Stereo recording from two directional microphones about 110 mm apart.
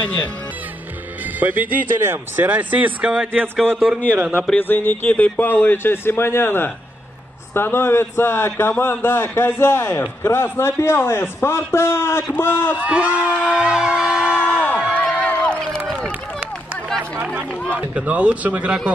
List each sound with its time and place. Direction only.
0.0 s speech: 10° left (ahead or behind)
1.4 s a man's voice: 15° right (ahead or behind)
4.1 s speech: 15° right (ahead or behind)
4.4 s a man's voice: 15° left (ahead or behind)
12.7 s speech: 10° right (ahead or behind)
15.2 s a sound: 10° left (ahead or behind)
16.0 s run: 10° right (ahead or behind)
17.7 s speech: 15° right (ahead or behind)